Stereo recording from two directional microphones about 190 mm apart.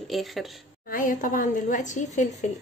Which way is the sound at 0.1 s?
Centre (ahead or behind).